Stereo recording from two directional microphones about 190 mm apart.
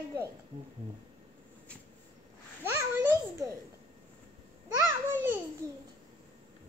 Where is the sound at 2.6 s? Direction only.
15° right (ahead or behind).